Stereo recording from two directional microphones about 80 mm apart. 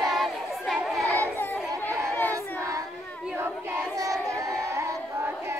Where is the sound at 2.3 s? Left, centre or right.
Right.